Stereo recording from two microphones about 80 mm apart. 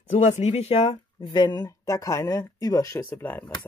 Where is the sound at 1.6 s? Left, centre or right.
Left.